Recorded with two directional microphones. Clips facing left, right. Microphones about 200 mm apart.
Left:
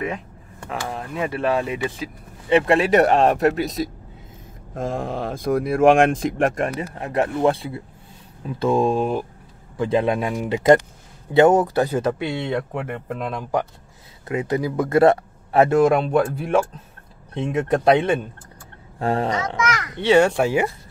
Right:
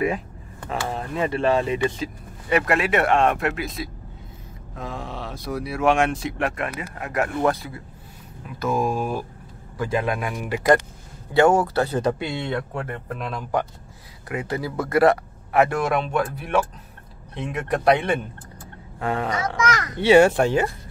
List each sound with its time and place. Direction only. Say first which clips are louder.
0.7 s speech: right 1 dB; centre (ahead or behind)
2.5 s speech: left 5 dB; 30° left (ahead or behind); by 12.4 s 5° left (ahead or behind)
12.4 s speech: left 2 dB; 15° left (ahead or behind)
14.2 s speech: left 5 dB; 20° left (ahead or behind)
19.7 s a child's voice: right 1 dB; 40° right (ahead or behind)
20.0 s speech: right 1 dB; 5° right (ahead or behind)
20.4 s speech: left 1 dB; 10° left (ahead or behind)